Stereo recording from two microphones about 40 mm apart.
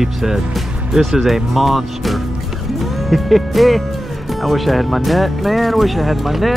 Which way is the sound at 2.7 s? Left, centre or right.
Centre.